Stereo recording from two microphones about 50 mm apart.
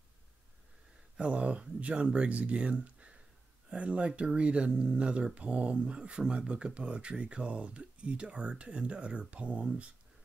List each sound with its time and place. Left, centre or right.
1.1 s speech: right